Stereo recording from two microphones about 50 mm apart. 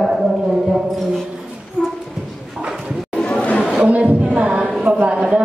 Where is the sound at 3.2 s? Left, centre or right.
Left.